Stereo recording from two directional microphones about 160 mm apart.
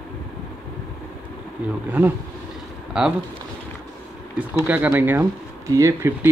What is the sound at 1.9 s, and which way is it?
Speech, 10° right (ahead or behind).